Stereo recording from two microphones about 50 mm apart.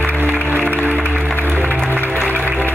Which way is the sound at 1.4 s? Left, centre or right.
Right.